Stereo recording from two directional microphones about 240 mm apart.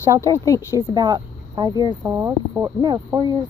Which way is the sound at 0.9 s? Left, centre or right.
Centre.